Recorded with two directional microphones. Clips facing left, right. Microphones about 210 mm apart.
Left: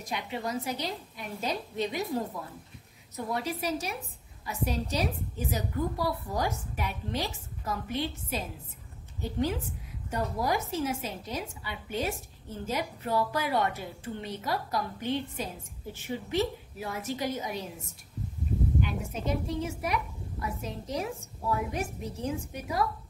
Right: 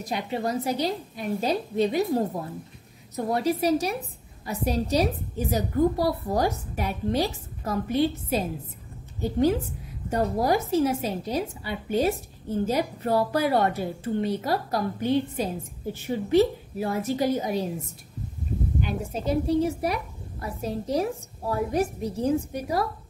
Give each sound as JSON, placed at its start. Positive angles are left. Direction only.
{"t": 0.0, "sound": "a woman's voice", "side_deg": -35}
{"t": 18.8, "sound": "a woman's voice", "side_deg": -35}